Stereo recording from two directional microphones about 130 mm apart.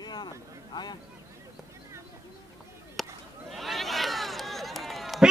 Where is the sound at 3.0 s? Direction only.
Centre (ahead or behind).